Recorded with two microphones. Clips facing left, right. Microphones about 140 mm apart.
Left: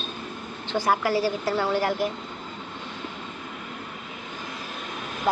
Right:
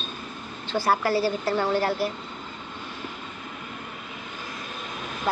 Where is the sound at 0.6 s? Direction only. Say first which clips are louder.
Even; 15° left (ahead or behind).